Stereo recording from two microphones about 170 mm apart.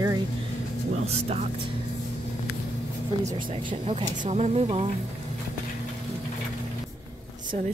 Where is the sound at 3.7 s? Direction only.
35° right (ahead or behind).